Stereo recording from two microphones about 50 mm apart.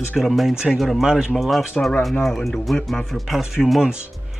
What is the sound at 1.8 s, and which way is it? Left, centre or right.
Speech, centre.